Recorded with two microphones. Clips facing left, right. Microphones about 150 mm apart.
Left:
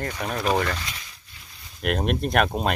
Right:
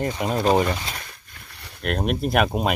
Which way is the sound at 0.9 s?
55° right (ahead or behind).